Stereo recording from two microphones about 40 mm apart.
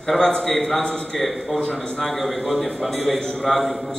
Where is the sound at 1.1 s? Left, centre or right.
Centre.